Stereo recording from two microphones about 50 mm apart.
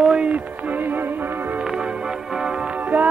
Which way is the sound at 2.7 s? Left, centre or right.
Right.